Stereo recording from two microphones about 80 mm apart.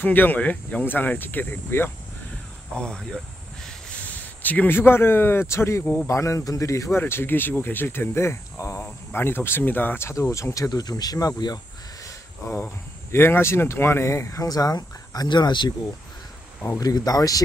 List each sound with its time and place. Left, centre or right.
0.0 s speech: left
2.8 s speech: centre
4.4 s speech: left
7.0 s speech: left
12.4 s speech: left
15.2 s speech: left
16.6 s speech: left